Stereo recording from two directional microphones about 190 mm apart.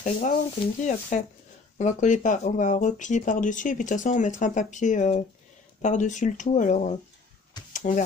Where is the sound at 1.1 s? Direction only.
40° left (ahead or behind).